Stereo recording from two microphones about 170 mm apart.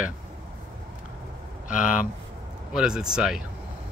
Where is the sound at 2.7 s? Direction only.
5° right (ahead or behind).